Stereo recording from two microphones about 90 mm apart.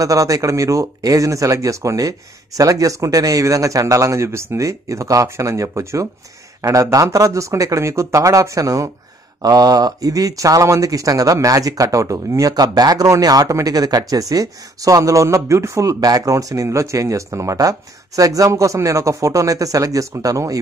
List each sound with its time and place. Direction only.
0.0 s speech: 40° right (ahead or behind)